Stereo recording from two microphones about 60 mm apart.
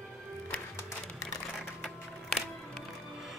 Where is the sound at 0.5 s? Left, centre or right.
Left.